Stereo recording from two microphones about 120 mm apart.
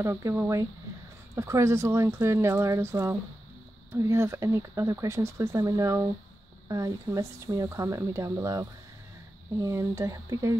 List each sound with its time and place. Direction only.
0.0 s speech: 25° right (ahead or behind)